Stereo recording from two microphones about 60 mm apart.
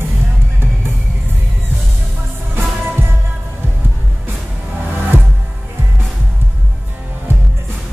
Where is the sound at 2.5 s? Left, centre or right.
Right.